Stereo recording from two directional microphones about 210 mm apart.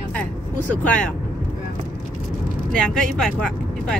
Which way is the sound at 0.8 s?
5° left (ahead or behind).